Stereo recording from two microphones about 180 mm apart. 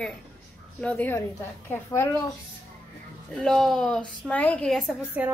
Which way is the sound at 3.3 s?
Centre (ahead or behind).